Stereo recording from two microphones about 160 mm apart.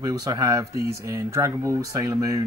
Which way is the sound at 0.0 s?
25° right (ahead or behind).